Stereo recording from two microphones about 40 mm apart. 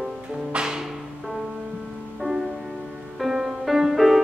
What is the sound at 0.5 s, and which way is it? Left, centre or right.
Music, centre.